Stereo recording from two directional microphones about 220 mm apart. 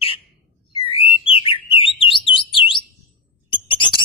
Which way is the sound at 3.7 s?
25° left (ahead or behind).